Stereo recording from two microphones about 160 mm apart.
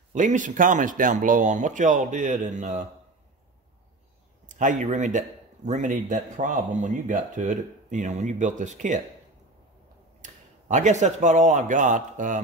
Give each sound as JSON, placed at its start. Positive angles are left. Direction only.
{"t": 0.1, "sound": "speech", "side_deg": -50}
{"t": 4.5, "sound": "speech", "side_deg": -50}
{"t": 10.2, "sound": "speech", "side_deg": -50}